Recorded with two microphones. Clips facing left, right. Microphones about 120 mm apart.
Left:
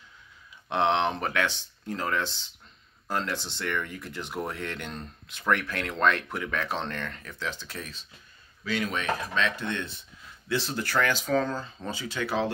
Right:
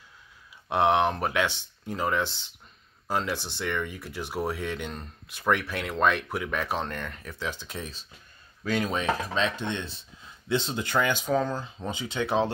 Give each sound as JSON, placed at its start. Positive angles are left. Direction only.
{"t": 0.7, "sound": "speech", "side_deg": -10}
{"t": 8.6, "sound": "speech", "side_deg": -40}